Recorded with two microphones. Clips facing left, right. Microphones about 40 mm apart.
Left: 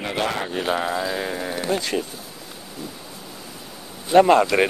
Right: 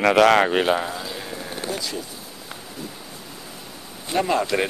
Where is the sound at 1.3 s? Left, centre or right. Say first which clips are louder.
Left 5 dB; left.